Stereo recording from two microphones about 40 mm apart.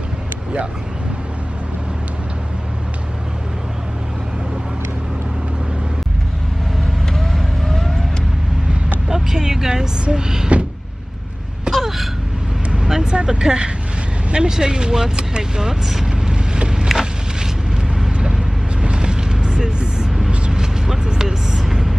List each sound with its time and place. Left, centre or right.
7.2 s vehicle: centre
9.1 s vehicle: centre
10.1 s speech: centre
11.7 s gasp: centre
12.8 s speech: centre
15.9 s vehicle: centre
17.9 s vehicle: centre